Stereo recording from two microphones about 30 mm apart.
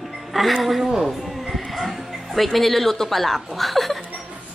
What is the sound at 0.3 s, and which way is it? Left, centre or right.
Speech, centre.